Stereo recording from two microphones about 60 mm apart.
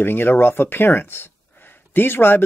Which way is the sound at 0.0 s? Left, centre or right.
Left.